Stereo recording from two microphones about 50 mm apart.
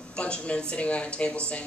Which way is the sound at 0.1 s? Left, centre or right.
Left.